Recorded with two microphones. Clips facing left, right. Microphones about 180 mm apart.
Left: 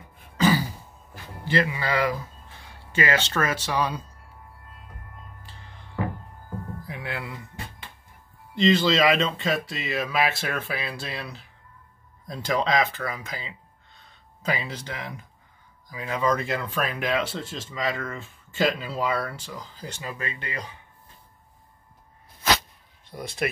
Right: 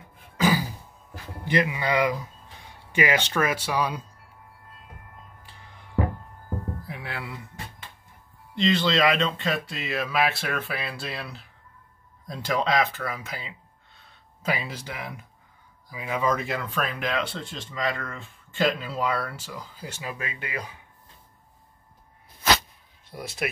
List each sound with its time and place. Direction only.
0.4 s throat clearing: 10° right (ahead or behind)
1.4 s speech: 15° right (ahead or behind)
5.4 s music: 10° right (ahead or behind)
6.9 s music: centre (ahead or behind)
8.5 s speech: centre (ahead or behind)
23.0 s speech: 5° right (ahead or behind)